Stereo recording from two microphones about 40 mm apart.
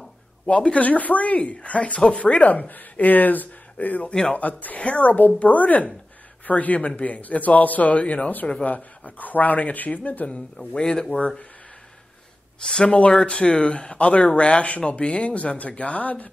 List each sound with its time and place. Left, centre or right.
0.5 s speech: left
0.8 s speech: left
4.1 s a man's voice: centre
4.4 s speech: left
10.7 s speech: left
12.6 s speech: left